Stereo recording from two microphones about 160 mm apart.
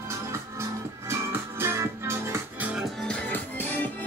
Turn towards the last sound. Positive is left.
turn(degrees=10)  # may be behind; listen again after turning